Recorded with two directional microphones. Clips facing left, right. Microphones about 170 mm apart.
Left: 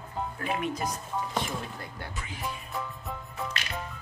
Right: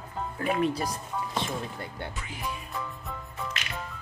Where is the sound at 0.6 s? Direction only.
35° right (ahead or behind).